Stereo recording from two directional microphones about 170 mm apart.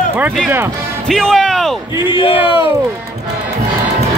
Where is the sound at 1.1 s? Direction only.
5° left (ahead or behind).